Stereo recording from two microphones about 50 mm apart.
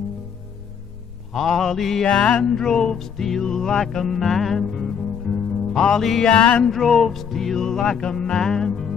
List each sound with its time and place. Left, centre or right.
1.3 s mantra: centre
2.0 s music: left
6.2 s music: left
6.6 s music: centre